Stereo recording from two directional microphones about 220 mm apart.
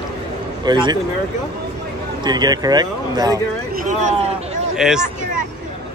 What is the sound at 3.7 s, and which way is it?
Speech, 35° right (ahead or behind).